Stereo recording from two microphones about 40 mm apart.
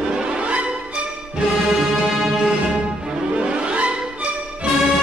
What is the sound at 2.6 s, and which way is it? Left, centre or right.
Music, right.